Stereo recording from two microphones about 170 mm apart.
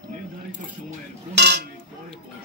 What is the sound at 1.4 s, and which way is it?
Dishes, 80° right.